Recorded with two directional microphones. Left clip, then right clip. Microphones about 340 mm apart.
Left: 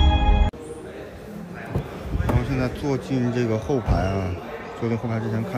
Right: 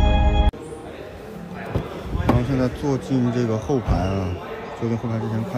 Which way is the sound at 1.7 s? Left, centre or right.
Centre.